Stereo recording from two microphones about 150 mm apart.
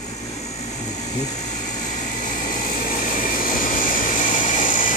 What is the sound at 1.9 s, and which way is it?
Vehicle, 55° left (ahead or behind).